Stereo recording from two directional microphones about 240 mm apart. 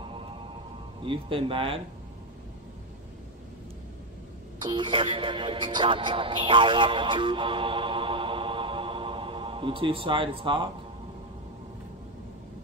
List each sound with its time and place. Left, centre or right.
0.0 s music: right
1.0 s speech: right
4.6 s speech: centre